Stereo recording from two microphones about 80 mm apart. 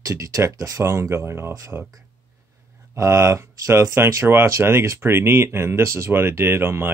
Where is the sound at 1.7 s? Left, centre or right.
Centre.